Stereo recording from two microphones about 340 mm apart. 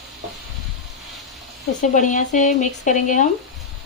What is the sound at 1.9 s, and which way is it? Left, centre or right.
Speech, left.